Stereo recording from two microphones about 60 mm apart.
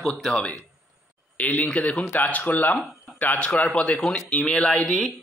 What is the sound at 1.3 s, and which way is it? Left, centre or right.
Speech, left.